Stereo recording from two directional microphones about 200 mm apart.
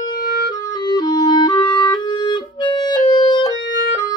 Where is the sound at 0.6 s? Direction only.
20° left (ahead or behind).